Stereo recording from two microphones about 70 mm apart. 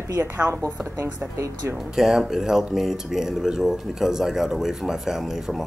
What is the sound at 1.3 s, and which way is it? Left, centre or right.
Speech, right.